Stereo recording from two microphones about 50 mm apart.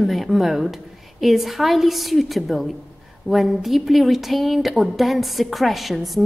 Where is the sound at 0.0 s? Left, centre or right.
Centre.